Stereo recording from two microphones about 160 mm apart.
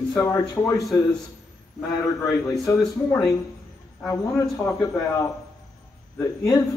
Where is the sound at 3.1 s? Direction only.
20° left (ahead or behind).